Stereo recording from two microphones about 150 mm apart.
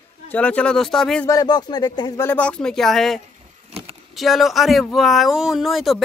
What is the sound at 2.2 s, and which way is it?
Speech, 10° left (ahead or behind).